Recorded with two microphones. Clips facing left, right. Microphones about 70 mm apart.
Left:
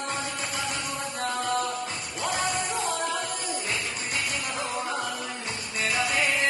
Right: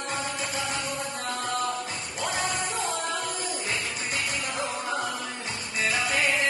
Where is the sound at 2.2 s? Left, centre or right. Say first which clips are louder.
Left 1 dB; left.